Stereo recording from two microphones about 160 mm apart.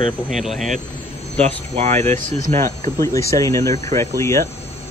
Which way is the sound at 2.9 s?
20° left (ahead or behind).